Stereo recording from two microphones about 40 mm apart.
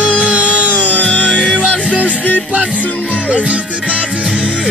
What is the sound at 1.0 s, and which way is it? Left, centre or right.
Music, left.